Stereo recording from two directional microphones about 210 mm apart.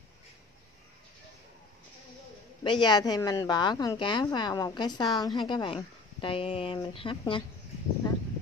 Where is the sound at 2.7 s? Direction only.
20° left (ahead or behind).